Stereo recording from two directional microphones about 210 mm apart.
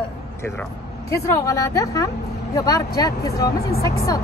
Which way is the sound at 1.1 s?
15° left (ahead or behind).